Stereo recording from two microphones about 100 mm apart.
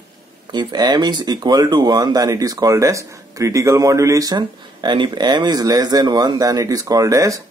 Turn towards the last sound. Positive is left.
turn(degrees=-35)  # may be behind; listen again after turning